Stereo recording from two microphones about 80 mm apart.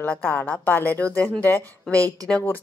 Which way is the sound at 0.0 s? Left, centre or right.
Left.